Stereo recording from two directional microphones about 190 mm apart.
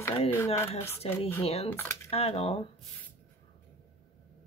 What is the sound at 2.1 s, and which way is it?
Speech, 30° left (ahead or behind).